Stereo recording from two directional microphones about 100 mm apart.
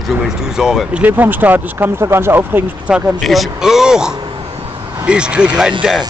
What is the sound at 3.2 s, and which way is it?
Speech, centre (ahead or behind).